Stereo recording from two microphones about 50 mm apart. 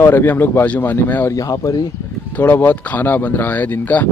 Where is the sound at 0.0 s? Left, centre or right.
Left.